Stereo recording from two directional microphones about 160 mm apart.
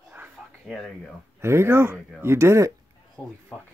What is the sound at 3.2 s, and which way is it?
Speech, 5° left (ahead or behind).